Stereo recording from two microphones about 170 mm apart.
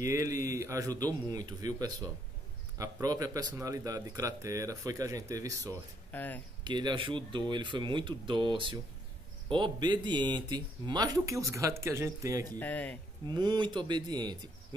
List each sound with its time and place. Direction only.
0.0 s speech: 20° right (ahead or behind)
6.1 s speech: 10° left (ahead or behind)
6.6 s speech: 25° right (ahead or behind)
12.5 s speech: 10° left (ahead or behind)
13.3 s speech: 25° right (ahead or behind)